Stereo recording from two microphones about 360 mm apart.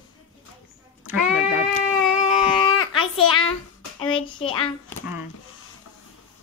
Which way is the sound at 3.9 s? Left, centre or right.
Centre.